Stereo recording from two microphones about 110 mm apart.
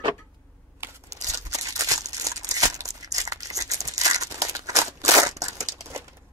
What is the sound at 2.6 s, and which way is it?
Crumpling, 30° right (ahead or behind).